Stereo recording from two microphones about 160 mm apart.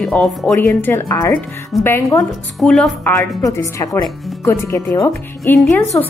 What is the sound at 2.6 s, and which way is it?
Speech, 5° left (ahead or behind).